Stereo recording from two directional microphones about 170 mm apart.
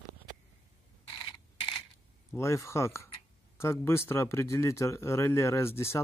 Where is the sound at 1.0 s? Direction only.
30° left (ahead or behind).